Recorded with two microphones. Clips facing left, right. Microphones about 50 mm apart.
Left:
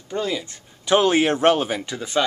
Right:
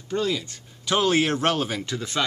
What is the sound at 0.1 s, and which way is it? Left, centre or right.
Speech, centre.